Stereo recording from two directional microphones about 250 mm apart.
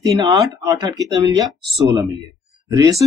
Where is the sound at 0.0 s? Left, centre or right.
Centre.